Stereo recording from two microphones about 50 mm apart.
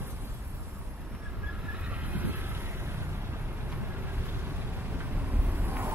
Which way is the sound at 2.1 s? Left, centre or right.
Right.